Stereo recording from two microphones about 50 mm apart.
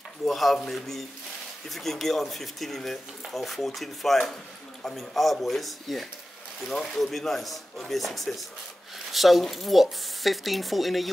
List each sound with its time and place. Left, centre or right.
0.2 s speech: centre